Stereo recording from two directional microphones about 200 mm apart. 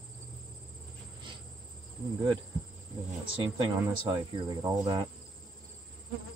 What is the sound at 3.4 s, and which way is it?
Speech, 25° right (ahead or behind).